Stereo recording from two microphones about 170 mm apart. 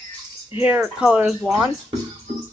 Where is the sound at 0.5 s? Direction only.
10° right (ahead or behind).